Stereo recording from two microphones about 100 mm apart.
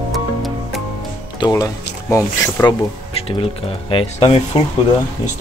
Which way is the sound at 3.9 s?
75° left (ahead or behind).